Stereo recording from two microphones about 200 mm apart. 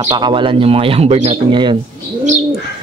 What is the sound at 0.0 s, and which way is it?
Speech, 20° right (ahead or behind).